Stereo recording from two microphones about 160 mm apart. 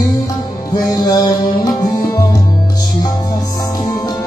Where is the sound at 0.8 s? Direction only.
20° left (ahead or behind).